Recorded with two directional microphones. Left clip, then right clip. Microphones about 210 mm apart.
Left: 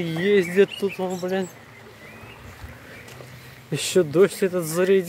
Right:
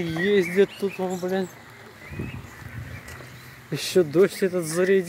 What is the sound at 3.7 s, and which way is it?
Speech, 10° left (ahead or behind).